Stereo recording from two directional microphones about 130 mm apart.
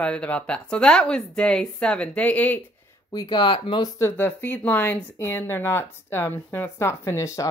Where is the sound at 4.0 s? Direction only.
15° left (ahead or behind).